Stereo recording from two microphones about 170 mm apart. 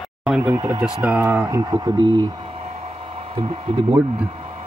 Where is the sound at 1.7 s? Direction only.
25° right (ahead or behind).